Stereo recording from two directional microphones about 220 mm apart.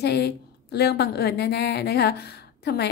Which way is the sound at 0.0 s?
45° left (ahead or behind).